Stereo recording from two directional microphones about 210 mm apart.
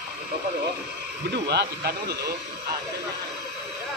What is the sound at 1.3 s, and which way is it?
Speech, 50° right (ahead or behind).